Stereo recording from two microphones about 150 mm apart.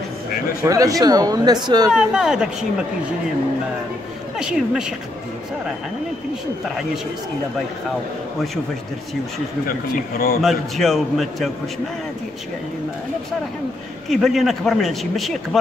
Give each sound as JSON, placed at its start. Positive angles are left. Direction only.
{"t": 0.7, "sound": "speech", "side_deg": -20}
{"t": 1.9, "sound": "a man's voice", "side_deg": -5}
{"t": 4.4, "sound": "a man's voice", "side_deg": -5}
{"t": 9.7, "sound": "speech", "side_deg": 75}
{"t": 10.4, "sound": "a man's voice", "side_deg": 0}
{"t": 14.0, "sound": "a man's voice", "side_deg": 0}